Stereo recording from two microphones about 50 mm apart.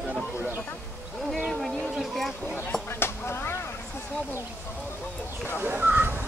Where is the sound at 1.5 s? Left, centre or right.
Centre.